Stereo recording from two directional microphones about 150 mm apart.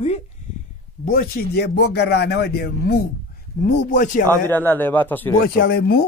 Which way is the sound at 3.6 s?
55° left (ahead or behind).